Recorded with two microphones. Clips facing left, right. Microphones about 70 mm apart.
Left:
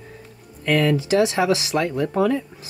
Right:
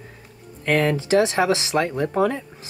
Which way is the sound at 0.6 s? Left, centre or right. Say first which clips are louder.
Left 1 dB; right.